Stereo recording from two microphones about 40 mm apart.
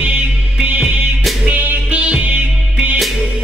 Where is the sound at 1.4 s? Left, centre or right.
Right.